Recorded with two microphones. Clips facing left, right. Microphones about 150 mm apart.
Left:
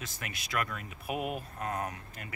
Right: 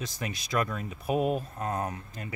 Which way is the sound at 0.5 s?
30° right (ahead or behind).